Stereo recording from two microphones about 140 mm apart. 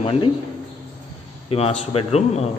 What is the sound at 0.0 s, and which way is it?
Speech, 40° left (ahead or behind).